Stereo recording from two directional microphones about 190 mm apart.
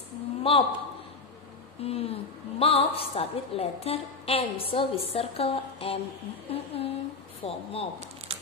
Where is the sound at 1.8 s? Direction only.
30° left (ahead or behind).